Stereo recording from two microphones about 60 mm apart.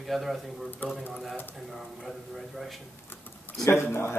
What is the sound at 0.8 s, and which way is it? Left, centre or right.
Speech, left.